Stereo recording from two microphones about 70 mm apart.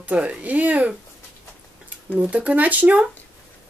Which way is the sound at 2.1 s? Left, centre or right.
Right.